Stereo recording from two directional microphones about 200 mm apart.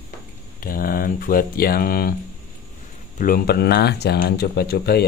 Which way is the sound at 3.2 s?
50° left (ahead or behind).